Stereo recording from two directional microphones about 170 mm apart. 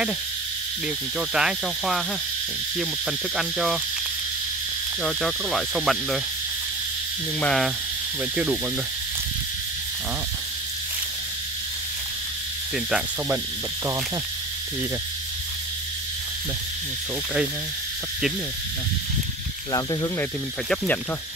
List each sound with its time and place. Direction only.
1.3 s speech: 5° right (ahead or behind)
5.0 s speech: centre (ahead or behind)
7.3 s speech: 5° left (ahead or behind)
12.7 s speech: 5° right (ahead or behind)
19.7 s speech: 20° left (ahead or behind)
20.7 s speech: 10° left (ahead or behind)